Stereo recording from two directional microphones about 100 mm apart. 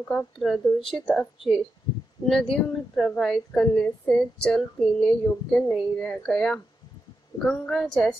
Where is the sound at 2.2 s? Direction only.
5° left (ahead or behind).